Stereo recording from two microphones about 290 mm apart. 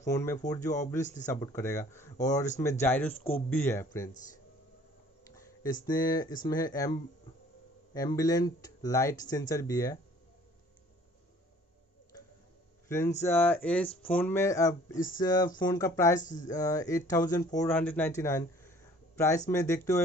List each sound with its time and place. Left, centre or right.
0.0 s speech: centre
5.6 s speech: centre
12.8 s speech: centre